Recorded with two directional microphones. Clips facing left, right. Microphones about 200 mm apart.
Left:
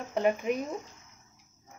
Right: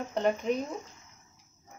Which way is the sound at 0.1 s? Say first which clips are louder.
Left 1 dB; 5° left (ahead or behind).